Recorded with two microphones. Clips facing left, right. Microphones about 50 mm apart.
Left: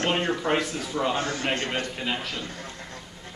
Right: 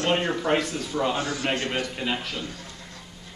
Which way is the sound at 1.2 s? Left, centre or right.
Left.